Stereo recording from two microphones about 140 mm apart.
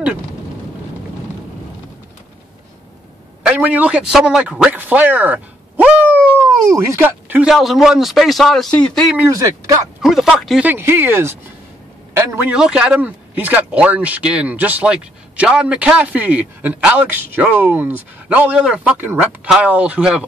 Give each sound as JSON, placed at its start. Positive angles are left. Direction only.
{"t": 3.4, "sound": "a man's voice", "side_deg": -10}
{"t": 6.1, "sound": "a sound", "side_deg": -20}
{"t": 7.4, "sound": "a man's voice", "side_deg": 0}
{"t": 10.6, "sound": "a man's voice", "side_deg": -15}
{"t": 12.5, "sound": "speech", "side_deg": -5}